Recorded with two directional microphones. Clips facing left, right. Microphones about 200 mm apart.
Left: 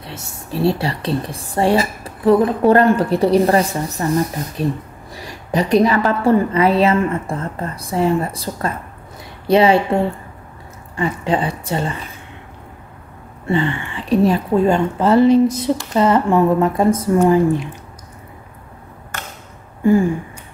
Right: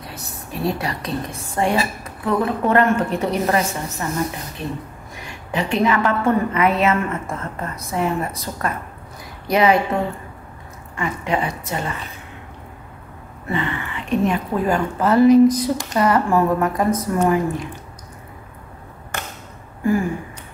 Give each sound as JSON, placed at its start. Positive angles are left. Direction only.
{"t": 0.0, "sound": "a woman's voice", "side_deg": 25}
{"t": 13.5, "sound": "speech", "side_deg": 30}
{"t": 19.8, "sound": "a sound", "side_deg": 25}